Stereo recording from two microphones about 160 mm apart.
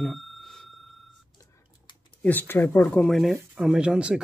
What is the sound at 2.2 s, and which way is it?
Speech, 10° left (ahead or behind).